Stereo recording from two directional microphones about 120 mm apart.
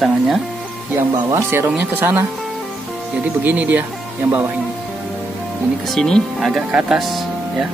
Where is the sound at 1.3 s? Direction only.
20° right (ahead or behind).